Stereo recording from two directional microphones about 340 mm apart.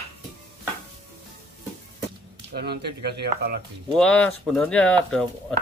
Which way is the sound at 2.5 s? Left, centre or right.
Right.